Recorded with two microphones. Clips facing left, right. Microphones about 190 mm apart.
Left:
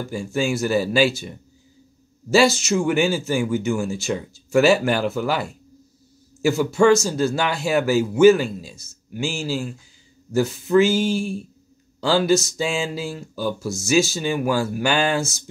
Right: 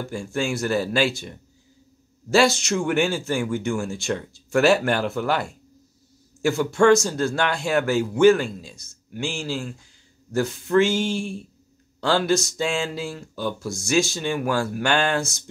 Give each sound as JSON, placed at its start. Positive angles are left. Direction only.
{"t": 0.1, "sound": "speech", "side_deg": 5}